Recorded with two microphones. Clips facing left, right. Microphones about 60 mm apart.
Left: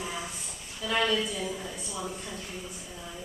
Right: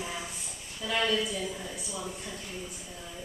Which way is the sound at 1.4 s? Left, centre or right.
Centre.